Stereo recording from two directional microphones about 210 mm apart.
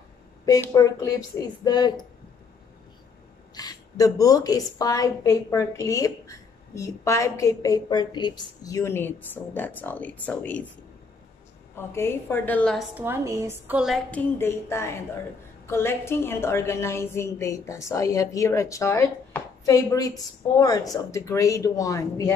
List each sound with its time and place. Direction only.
0.5 s a woman's voice: 15° left (ahead or behind)
3.5 s a woman's voice: 15° left (ahead or behind)
11.7 s a woman's voice: 10° left (ahead or behind)
12.9 s a woman's voice: 10° right (ahead or behind)
14.4 s a woman's voice: 10° left (ahead or behind)